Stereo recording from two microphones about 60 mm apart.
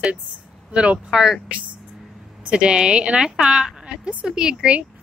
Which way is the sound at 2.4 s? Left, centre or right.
Centre.